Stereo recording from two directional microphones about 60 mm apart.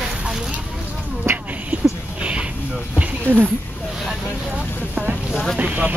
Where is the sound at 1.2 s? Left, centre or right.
Right.